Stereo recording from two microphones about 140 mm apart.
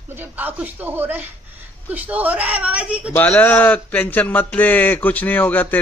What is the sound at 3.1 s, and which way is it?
Speech, 10° left (ahead or behind).